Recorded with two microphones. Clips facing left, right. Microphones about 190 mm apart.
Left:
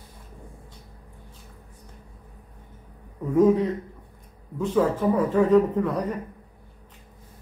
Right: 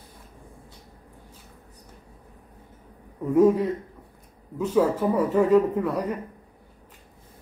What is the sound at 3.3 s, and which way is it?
A man's voice, 5° right (ahead or behind).